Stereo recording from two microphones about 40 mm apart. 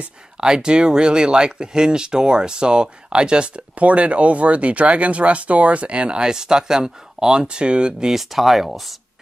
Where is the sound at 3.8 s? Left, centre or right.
Right.